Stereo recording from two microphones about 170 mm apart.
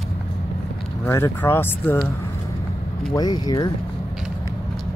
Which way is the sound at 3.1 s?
25° left (ahead or behind).